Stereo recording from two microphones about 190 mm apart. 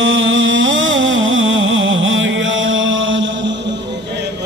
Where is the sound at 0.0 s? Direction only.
80° right.